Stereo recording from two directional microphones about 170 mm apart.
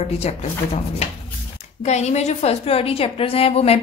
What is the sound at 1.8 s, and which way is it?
A woman's voice, 40° left (ahead or behind).